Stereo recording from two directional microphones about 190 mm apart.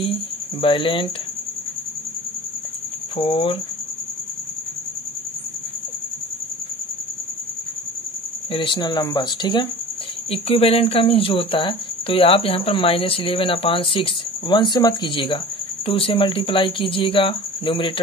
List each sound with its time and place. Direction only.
0.0 s speech: 30° left (ahead or behind)
3.2 s speech: 25° left (ahead or behind)
8.5 s speech: 25° left (ahead or behind)